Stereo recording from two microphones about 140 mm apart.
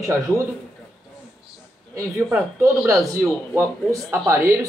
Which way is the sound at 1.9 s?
20° right (ahead or behind).